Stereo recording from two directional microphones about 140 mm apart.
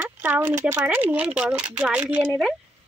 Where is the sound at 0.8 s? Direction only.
10° right (ahead or behind).